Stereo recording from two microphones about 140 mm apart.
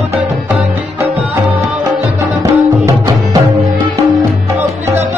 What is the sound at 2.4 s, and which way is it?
Music, 25° right (ahead or behind).